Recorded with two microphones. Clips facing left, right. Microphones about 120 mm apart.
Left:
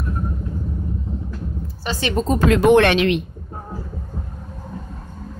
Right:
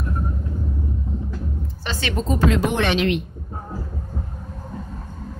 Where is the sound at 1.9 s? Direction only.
15° left (ahead or behind).